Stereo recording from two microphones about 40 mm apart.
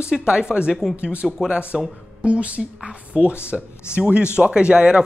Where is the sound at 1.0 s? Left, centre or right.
Right.